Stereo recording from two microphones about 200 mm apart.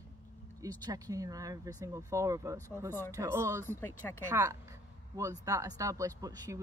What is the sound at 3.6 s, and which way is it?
Speech, 10° left (ahead or behind).